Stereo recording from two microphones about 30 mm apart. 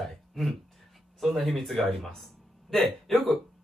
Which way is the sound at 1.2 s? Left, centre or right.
Centre.